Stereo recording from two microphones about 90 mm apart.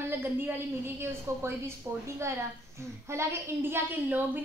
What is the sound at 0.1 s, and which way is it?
A woman's voice, 25° right (ahead or behind).